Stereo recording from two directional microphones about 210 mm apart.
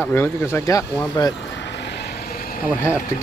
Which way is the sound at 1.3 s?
55° left (ahead or behind).